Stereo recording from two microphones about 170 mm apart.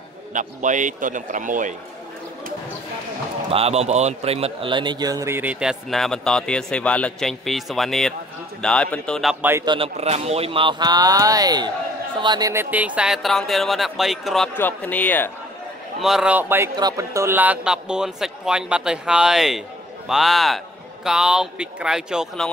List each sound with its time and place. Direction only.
0.3 s a man's voice: 50° right (ahead or behind)
3.4 s a man's voice: 35° right (ahead or behind); by 9.7 s 10° right (ahead or behind)
9.7 s speech: 35° right (ahead or behind)
12.7 s a man's voice: 10° right (ahead or behind)
14.5 s speech: 10° left (ahead or behind)
16.0 s a man's voice: 5° right (ahead or behind)